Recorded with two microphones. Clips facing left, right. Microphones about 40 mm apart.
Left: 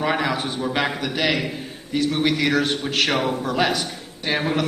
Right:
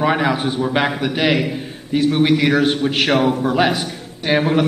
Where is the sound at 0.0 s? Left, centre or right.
Centre.